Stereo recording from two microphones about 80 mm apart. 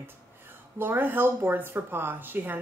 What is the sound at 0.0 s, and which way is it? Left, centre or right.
Speech, right.